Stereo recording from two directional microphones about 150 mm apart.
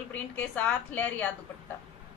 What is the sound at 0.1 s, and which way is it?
A woman's voice, 10° left (ahead or behind).